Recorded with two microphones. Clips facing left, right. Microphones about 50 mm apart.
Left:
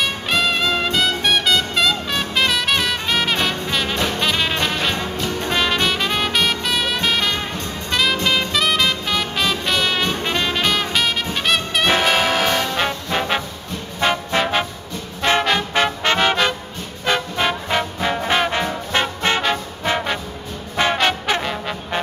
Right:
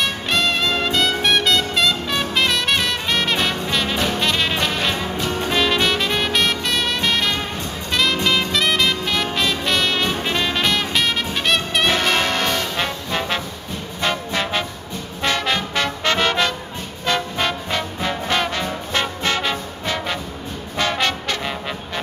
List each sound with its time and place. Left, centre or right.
0.0 s music: centre
15.2 s music: centre
15.7 s music: left
17.0 s brass instrument: centre
19.8 s music: centre